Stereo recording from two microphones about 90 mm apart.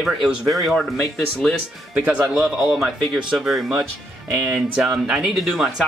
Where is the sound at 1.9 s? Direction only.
15° right (ahead or behind).